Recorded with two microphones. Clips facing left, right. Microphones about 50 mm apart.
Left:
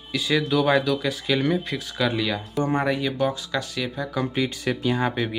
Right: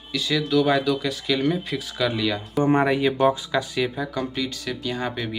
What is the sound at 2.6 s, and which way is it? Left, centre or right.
Speech, right.